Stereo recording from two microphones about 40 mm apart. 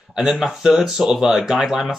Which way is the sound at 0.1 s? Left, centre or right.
Centre.